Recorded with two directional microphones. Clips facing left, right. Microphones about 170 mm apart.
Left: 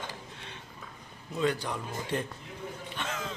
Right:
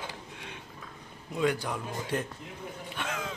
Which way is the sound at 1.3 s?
10° right (ahead or behind).